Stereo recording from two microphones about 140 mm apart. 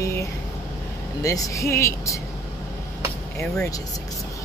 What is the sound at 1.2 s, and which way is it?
Speech, 25° left (ahead or behind).